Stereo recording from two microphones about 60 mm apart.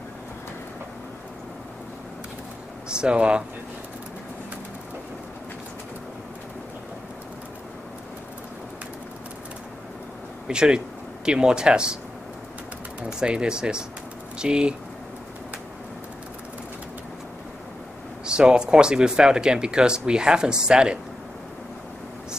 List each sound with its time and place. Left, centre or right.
2.9 s speech: centre
10.5 s speech: centre
13.0 s speech: centre
18.2 s speech: centre